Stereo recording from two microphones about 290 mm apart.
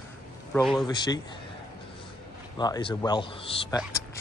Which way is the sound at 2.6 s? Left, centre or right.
Centre.